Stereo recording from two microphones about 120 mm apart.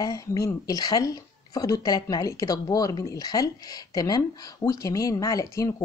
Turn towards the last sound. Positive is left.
turn(degrees=30)  # may be behind; listen again after turning